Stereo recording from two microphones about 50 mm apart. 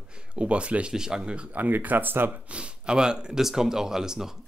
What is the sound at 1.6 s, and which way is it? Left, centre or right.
Speech, right.